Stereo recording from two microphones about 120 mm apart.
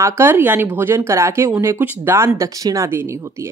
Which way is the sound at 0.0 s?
20° right (ahead or behind).